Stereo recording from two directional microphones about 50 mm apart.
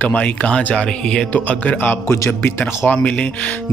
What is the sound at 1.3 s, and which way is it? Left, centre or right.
Speech, left.